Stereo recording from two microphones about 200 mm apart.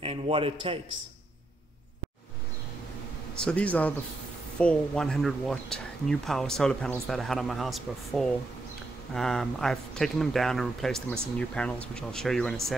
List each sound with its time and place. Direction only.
0.0 s a man's voice: 30° right (ahead or behind)
3.3 s a man's voice: 5° left (ahead or behind)